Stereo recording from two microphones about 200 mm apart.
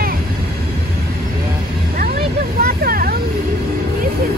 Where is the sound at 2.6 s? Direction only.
50° right (ahead or behind).